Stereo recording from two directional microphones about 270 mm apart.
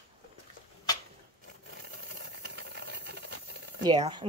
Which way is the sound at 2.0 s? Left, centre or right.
Right.